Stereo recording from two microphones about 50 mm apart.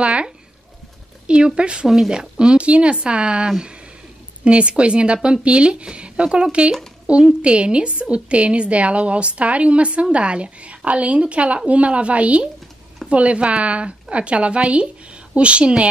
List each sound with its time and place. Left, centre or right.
0.0 s a woman's voice: right
1.9 s a woman's voice: centre